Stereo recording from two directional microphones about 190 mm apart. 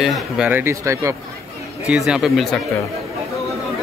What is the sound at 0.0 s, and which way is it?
Speech, 5° right (ahead or behind).